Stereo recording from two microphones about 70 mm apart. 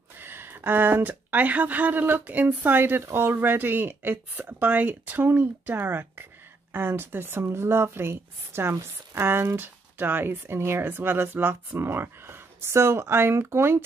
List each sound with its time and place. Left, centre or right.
0.2 s a woman's voice: right